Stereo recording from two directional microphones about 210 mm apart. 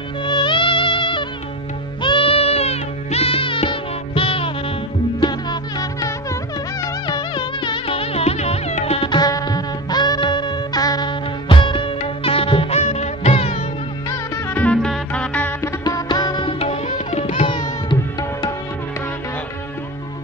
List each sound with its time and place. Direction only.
0.2 s music: 20° left (ahead or behind)
14.3 s music: 10° left (ahead or behind)
15.8 s music: 20° left (ahead or behind)